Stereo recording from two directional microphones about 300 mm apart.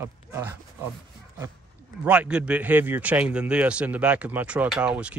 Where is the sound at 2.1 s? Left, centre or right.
Centre.